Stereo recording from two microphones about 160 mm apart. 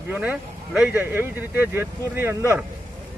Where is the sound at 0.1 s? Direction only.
10° right (ahead or behind).